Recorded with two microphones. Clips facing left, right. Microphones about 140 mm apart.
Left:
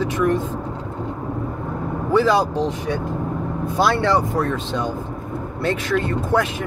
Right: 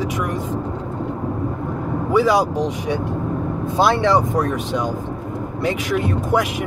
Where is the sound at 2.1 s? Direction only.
10° right (ahead or behind).